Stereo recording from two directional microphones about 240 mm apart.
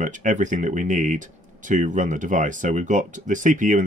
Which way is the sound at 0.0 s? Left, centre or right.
Right.